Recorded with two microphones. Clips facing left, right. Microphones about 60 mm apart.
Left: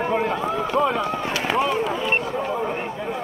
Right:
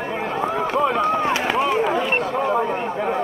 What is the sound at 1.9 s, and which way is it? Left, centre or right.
Speech, right.